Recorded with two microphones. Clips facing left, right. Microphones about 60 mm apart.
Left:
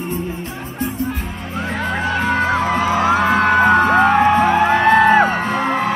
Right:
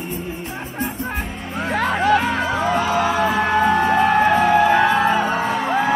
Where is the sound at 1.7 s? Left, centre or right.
Right.